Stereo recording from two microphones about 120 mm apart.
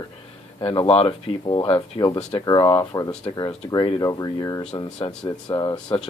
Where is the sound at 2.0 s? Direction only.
30° left (ahead or behind).